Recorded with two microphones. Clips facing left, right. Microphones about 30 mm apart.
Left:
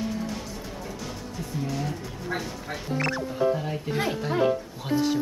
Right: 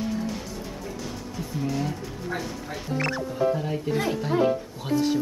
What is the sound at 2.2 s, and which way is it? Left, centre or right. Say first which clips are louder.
Speech: even; centre.